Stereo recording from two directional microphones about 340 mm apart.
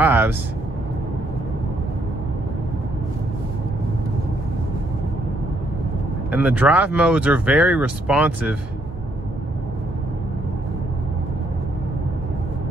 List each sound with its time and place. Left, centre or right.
0.0 s vehicle: centre
6.3 s speech: centre